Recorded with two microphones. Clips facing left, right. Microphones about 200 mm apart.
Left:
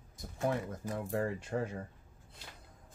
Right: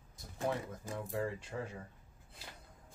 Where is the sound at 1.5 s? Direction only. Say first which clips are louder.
Left 7 dB; 55° left (ahead or behind).